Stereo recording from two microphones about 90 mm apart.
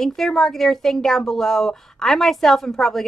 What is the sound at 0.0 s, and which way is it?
A woman's voice, 5° left (ahead or behind).